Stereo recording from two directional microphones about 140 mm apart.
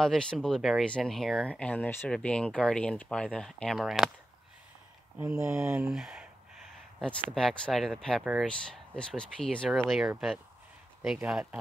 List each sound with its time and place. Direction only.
0.0 s speech: 5° left (ahead or behind)
5.4 s speech: 20° right (ahead or behind)
5.9 s speech: 5° right (ahead or behind)
7.0 s speech: 5° left (ahead or behind)
8.2 s speech: 10° right (ahead or behind)
8.5 s speech: 5° left (ahead or behind)